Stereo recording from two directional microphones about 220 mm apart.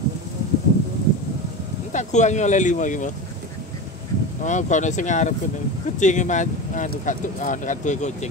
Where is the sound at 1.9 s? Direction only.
35° left (ahead or behind).